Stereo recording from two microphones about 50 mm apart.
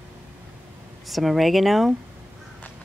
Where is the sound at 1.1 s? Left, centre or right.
Centre.